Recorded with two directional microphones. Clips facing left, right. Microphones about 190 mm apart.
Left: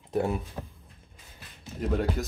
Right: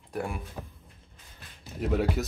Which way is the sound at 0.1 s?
25° left (ahead or behind).